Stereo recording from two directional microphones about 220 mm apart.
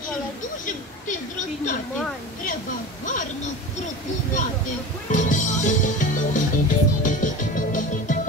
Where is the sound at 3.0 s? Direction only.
35° left (ahead or behind).